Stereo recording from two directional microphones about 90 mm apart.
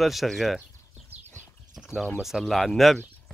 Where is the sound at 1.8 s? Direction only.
Centre (ahead or behind).